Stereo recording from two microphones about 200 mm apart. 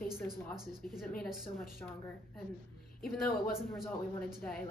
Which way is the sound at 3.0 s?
5° left (ahead or behind).